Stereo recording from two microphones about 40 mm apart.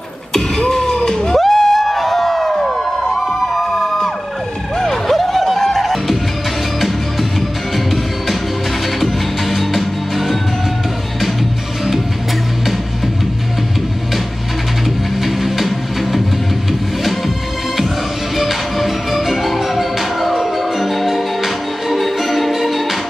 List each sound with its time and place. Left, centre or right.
0.6 s a sound: centre
4.7 s music: centre
7.7 s music: centre
15.2 s music: centre
18.3 s music: centre